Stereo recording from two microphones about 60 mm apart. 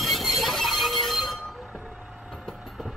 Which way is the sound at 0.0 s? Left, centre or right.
Centre.